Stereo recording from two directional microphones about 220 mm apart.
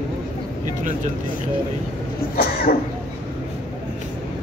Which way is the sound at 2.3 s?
45° left (ahead or behind).